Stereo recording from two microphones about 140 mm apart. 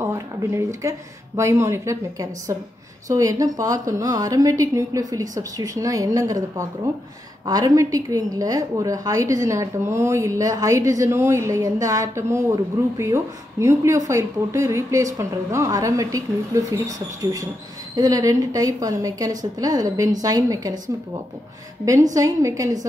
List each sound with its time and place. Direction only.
0.0 s a woman's voice: 20° right (ahead or behind)
21.8 s a woman's voice: 25° right (ahead or behind)